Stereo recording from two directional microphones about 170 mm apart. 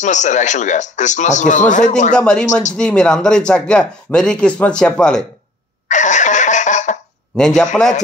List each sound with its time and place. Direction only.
0.0 s a man's voice: 45° left (ahead or behind)
2.1 s speech: 5° left (ahead or behind)
2.4 s a man's voice: 45° left (ahead or behind)
2.7 s speech: 5° left (ahead or behind)
5.9 s cough: 45° left (ahead or behind)
7.3 s speech: 5° left (ahead or behind)